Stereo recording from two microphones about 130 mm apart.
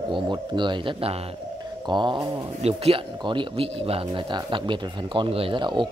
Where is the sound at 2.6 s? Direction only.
50° right (ahead or behind).